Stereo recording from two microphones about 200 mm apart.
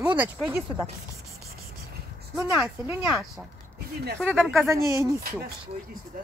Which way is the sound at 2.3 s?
5° right (ahead or behind).